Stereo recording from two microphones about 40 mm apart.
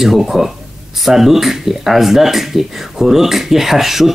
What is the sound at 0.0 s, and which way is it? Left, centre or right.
Speech, centre.